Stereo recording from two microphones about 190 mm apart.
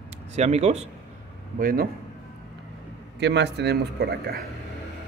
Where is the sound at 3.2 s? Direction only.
65° right (ahead or behind).